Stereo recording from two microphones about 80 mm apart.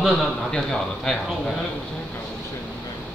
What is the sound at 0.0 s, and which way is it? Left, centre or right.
A man's voice, centre.